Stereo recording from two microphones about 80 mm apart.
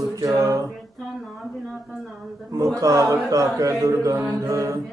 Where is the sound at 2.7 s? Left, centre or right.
Right.